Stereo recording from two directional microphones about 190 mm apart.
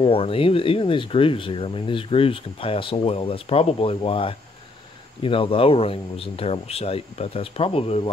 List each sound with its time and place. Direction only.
0.0 s speech: 30° left (ahead or behind)